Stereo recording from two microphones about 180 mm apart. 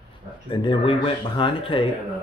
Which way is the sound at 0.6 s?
30° left (ahead or behind).